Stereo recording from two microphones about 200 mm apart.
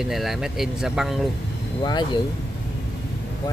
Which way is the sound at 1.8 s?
20° left (ahead or behind).